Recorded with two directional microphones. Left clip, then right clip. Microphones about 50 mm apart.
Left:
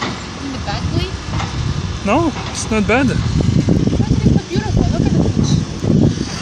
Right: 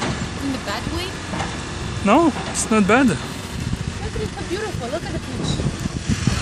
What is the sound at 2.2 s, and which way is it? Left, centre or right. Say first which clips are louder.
Speech: even; centre.